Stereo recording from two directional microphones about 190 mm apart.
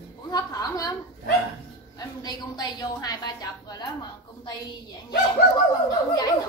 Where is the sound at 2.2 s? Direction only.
20° left (ahead or behind).